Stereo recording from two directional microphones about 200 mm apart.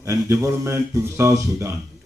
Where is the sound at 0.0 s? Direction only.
15° right (ahead or behind).